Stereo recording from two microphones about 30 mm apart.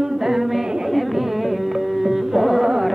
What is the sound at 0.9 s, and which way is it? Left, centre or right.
Music, centre.